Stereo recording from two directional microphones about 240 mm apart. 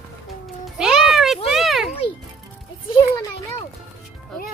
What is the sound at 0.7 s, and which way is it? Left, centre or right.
Music, centre.